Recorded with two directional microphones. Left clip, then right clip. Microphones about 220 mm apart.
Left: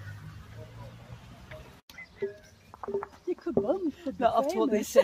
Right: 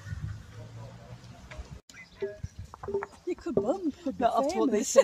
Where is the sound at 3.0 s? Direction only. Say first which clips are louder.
Even; 40° right (ahead or behind).